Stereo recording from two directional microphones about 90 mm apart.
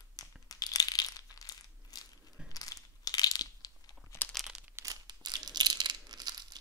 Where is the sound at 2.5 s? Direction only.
40° left (ahead or behind).